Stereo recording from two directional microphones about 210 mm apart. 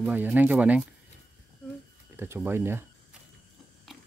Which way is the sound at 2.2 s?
10° right (ahead or behind).